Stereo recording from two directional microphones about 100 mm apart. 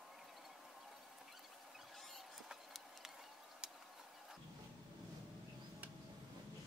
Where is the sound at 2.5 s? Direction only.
5° right (ahead or behind).